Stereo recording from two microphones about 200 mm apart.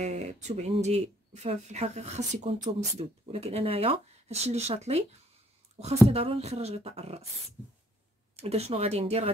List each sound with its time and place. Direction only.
0.0 s speech: 35° right (ahead or behind)
6.0 s speech: 30° right (ahead or behind)
8.4 s speech: 30° right (ahead or behind)